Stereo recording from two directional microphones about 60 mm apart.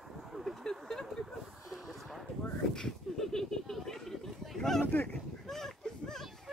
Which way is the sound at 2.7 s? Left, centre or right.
Centre.